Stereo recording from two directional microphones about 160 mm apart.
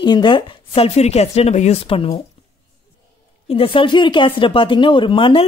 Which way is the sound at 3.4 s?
35° left (ahead or behind).